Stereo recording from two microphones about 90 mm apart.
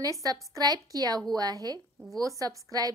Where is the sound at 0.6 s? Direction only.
45° right (ahead or behind).